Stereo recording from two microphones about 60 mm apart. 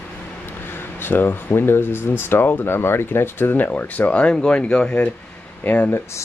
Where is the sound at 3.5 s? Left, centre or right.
Left.